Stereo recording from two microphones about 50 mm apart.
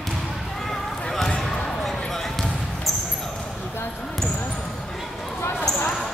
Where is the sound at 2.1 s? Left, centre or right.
Centre.